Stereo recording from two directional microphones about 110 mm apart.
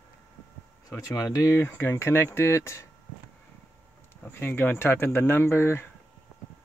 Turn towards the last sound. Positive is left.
turn(degrees=20)  # may be behind; listen again after turning